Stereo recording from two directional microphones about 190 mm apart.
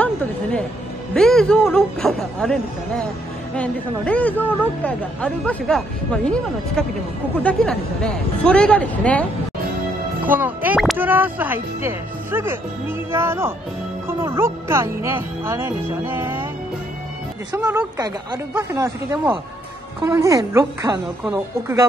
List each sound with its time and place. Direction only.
1.1 s a woman's voice: 5° left (ahead or behind)
10.2 s speech: 10° right (ahead or behind)
17.6 s speech: 10° right (ahead or behind)